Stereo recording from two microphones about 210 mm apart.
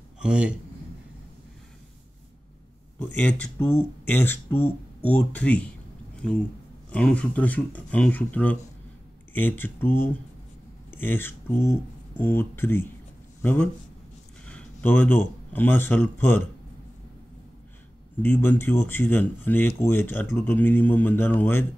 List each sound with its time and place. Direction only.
0.2 s speech: 5° right (ahead or behind)
3.0 s speech: 10° left (ahead or behind)
6.9 s speech: 5° left (ahead or behind)
18.2 s speech: 10° left (ahead or behind)